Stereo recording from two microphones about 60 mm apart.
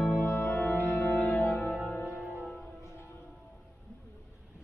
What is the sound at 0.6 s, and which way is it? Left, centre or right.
Music, left.